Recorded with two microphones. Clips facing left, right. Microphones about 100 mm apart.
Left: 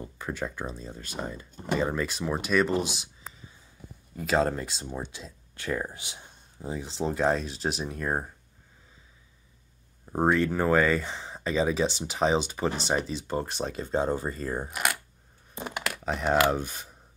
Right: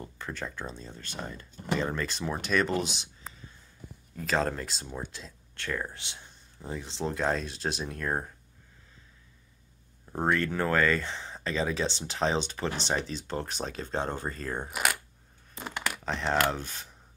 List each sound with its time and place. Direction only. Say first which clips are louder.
0.0 s speech: left 4 dB; 5° left (ahead or behind)
2.8 s a sound: left 2 dB; 5° left (ahead or behind)
4.2 s speech: left 3 dB; 5° left (ahead or behind)
10.1 s speech: left 4 dB; 15° left (ahead or behind)
15.5 s a sound: left 3 dB; 15° left (ahead or behind)
15.8 s speech: left 2 dB; 5° left (ahead or behind)